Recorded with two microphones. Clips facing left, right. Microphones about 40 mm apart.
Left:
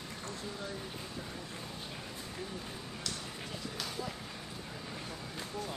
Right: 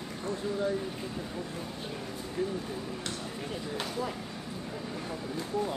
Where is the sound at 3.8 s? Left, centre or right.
Right.